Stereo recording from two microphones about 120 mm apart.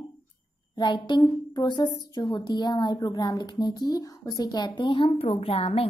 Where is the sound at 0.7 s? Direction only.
40° left (ahead or behind).